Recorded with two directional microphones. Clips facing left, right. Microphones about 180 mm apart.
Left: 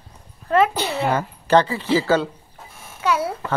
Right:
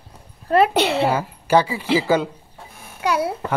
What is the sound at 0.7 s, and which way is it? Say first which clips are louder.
Speech: right 6 dB; 70° right (ahead or behind).